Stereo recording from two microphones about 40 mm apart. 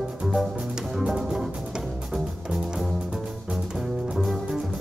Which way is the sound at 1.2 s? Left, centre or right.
Centre.